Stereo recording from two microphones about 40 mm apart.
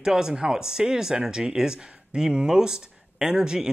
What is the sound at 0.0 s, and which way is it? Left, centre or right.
Speech, centre.